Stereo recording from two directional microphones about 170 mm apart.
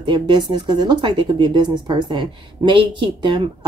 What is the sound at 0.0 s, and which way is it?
Speech, 25° right (ahead or behind).